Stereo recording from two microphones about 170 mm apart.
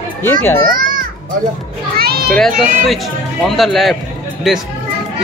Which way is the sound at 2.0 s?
65° right (ahead or behind).